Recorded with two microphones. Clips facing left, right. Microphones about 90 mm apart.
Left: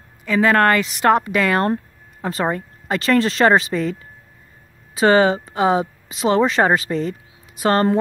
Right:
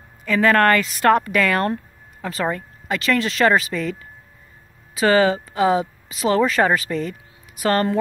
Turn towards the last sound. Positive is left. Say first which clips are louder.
# left 2 dB
turn(degrees=30)  # may be behind; listen again after turning